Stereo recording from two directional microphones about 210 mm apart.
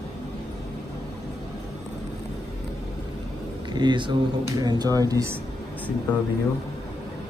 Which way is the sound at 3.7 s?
20° right (ahead or behind).